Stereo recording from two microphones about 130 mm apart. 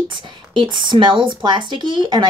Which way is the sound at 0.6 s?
35° right (ahead or behind).